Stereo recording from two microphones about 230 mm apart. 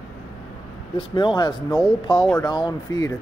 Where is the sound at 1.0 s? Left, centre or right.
Left.